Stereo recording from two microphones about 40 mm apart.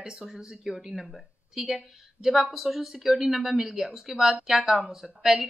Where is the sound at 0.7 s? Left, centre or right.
Centre.